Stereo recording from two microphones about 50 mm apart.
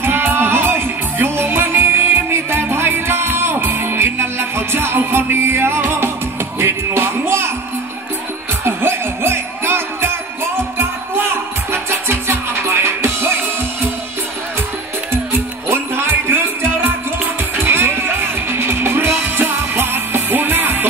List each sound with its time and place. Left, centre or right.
0.0 s music: right
8.6 s music: right
11.7 s music: right
15.7 s music: right
17.6 s music: right